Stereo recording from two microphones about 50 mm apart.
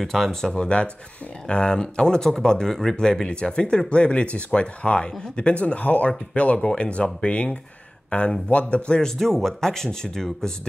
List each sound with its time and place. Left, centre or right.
0.0 s speech: centre; by 9.0 s left
9.0 s speech: centre